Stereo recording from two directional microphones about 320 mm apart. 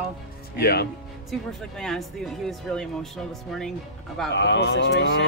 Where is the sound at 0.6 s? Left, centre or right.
Left.